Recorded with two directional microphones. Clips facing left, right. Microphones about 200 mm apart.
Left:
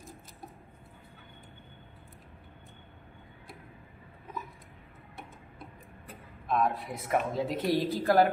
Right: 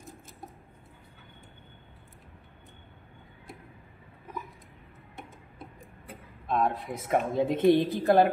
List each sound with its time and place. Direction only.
6.4 s speech: 25° right (ahead or behind)